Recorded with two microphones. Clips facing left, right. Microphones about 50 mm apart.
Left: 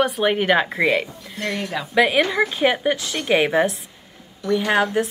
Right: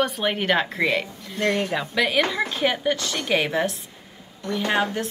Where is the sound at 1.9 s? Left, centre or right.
Centre.